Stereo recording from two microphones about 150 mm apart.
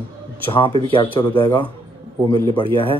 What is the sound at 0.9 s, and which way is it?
Speech, 35° left (ahead or behind).